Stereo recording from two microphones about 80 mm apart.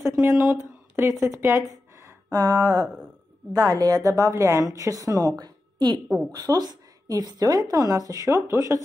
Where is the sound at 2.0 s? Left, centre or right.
Right.